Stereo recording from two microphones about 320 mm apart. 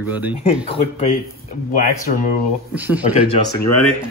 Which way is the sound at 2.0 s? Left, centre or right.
Left.